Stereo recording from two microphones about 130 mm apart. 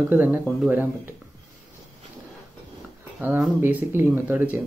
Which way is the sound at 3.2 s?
15° right (ahead or behind).